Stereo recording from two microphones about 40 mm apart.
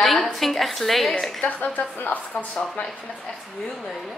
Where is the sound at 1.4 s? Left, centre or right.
Left.